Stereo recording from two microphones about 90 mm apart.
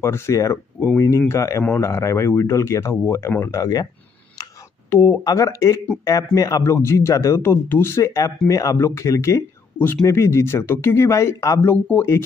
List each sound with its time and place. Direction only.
0.0 s speech: 30° left (ahead or behind)
4.8 s speech: 30° left (ahead or behind)
6.6 s speech: 30° left (ahead or behind)